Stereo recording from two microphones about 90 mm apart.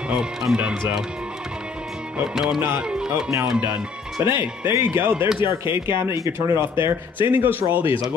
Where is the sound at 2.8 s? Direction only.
10° right (ahead or behind).